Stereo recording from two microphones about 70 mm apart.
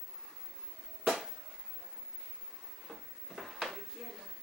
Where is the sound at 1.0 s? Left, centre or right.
Centre.